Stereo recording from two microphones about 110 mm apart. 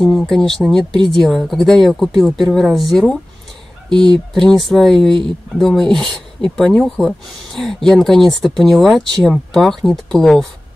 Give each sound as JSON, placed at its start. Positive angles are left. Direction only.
{"t": 0.0, "sound": "speech", "side_deg": 5}
{"t": 0.9, "sound": "speech", "side_deg": -40}
{"t": 1.2, "sound": "speech", "side_deg": 5}
{"t": 3.9, "sound": "speech", "side_deg": -40}
{"t": 4.3, "sound": "speech", "side_deg": 5}